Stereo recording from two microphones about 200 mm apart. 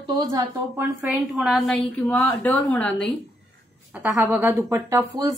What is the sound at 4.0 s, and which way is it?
A woman's voice, 10° right (ahead or behind).